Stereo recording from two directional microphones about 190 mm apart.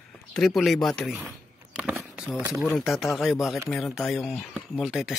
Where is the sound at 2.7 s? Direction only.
Centre (ahead or behind).